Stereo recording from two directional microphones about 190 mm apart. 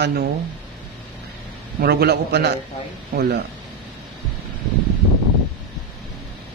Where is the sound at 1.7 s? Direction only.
55° right (ahead or behind).